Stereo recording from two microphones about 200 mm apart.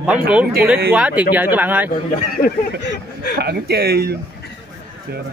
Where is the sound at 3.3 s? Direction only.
55° right (ahead or behind).